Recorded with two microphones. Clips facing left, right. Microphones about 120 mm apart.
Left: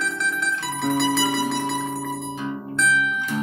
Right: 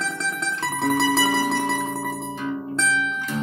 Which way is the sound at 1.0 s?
40° right (ahead or behind).